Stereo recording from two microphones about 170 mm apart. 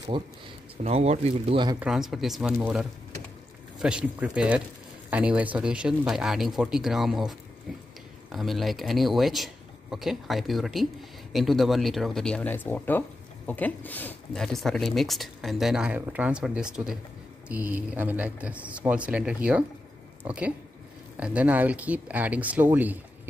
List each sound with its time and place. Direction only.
0.1 s speech: 30° right (ahead or behind)
1.8 s a man's voice: centre (ahead or behind)